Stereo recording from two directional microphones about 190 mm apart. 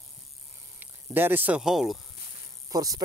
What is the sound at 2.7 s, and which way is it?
Speech, 20° right (ahead or behind).